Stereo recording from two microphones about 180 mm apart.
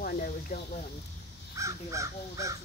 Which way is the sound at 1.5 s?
15° right (ahead or behind).